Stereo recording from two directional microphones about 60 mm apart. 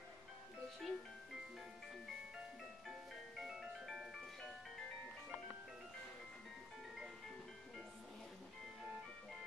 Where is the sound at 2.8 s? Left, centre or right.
Centre.